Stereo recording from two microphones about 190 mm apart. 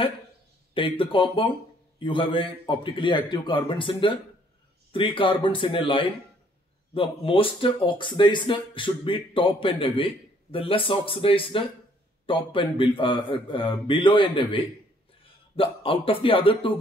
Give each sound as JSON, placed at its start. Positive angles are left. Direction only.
{"t": 0.7, "sound": "a man's voice", "side_deg": 25}